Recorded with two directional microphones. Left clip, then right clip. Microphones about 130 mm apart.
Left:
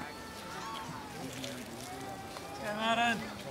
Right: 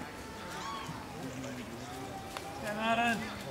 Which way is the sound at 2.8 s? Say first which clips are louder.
Even; 20° left (ahead or behind).